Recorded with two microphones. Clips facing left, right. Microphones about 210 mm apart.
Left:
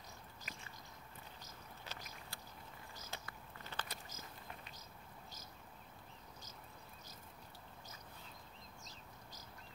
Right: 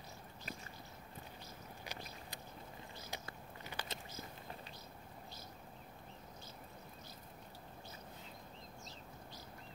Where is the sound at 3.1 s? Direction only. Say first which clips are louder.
Right 2 dB; 15° right (ahead or behind).